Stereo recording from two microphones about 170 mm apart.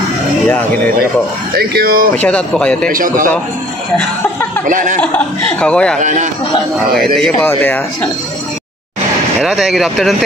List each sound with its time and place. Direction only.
0.5 s speech: 10° left (ahead or behind)
1.5 s speech: 60° right (ahead or behind)
2.1 s speech: 10° left (ahead or behind)
2.9 s a man's voice: 55° right (ahead or behind)
4.6 s a man's voice: 50° right (ahead or behind)
5.0 s speech: 5° left (ahead or behind)
5.9 s a man's voice: 45° right (ahead or behind)
7.2 s speech: 5° left (ahead or behind)
9.4 s speech: 5° right (ahead or behind)